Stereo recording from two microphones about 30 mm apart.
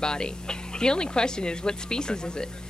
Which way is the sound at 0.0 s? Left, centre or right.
Left.